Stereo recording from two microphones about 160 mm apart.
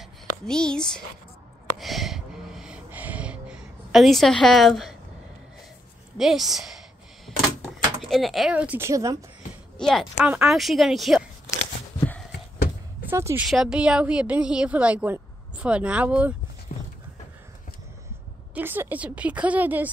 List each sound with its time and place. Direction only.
0.5 s speech: 5° left (ahead or behind)
1.8 s gasp: centre (ahead or behind)
6.1 s speech: centre (ahead or behind)
8.0 s a woman's voice: centre (ahead or behind); by 9.2 s 20° right (ahead or behind)
9.8 s speech: centre (ahead or behind)
13.1 s a woman's voice: 15° right (ahead or behind)
13.5 s a woman's voice: 5° right (ahead or behind)
16.7 s a sound: 55° left (ahead or behind)
18.5 s a woman's voice: 15° right (ahead or behind)